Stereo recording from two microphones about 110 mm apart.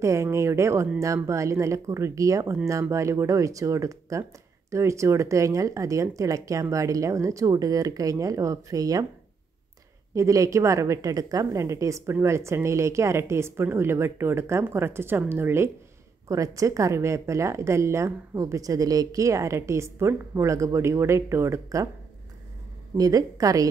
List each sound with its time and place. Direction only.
0.0 s speech: 25° right (ahead or behind)
10.1 s speech: 30° right (ahead or behind)
22.9 s a woman's voice: 35° right (ahead or behind)